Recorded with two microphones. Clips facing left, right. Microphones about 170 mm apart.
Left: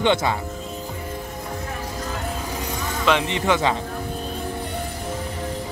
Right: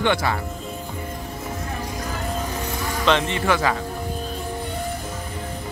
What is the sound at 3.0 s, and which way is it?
Speech, 15° left (ahead or behind).